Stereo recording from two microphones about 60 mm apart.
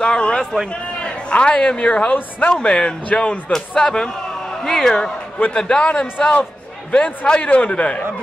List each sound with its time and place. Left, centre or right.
0.0 s a woman's voice: centre
2.5 s speech: centre
3.5 s a man's voice: centre